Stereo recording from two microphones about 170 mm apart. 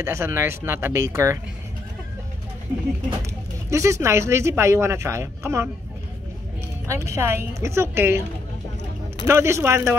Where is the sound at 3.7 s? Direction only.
15° right (ahead or behind).